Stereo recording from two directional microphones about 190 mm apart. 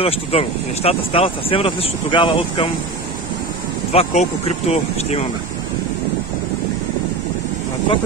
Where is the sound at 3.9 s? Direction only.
35° left (ahead or behind).